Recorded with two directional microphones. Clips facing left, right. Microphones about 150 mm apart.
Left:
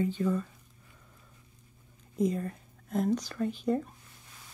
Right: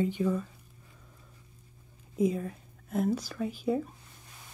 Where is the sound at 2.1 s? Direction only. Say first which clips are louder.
Right 1 dB; 5° right (ahead or behind).